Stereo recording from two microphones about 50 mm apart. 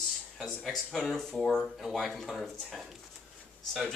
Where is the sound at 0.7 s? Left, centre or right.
Centre.